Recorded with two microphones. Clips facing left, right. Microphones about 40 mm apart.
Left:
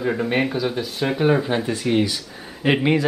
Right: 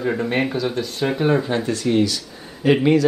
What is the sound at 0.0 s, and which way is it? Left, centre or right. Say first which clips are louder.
Speech: even; centre.